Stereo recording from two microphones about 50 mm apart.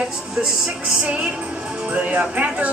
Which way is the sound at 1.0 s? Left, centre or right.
Right.